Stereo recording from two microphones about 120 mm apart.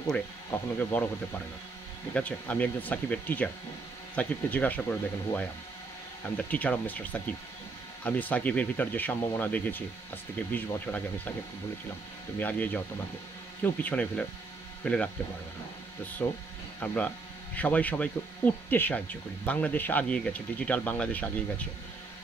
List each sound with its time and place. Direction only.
0.7 s speech: 15° left (ahead or behind)
12.4 s speech: 15° left (ahead or behind)
16.2 s speech: 15° left (ahead or behind)